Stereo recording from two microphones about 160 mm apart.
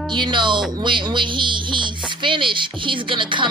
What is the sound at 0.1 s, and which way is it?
Speech, 30° right (ahead or behind).